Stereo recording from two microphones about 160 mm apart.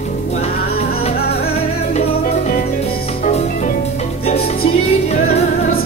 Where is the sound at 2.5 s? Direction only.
65° left (ahead or behind).